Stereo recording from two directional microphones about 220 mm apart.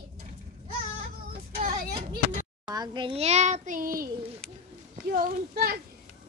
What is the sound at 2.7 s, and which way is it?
A child's voice, 20° right (ahead or behind).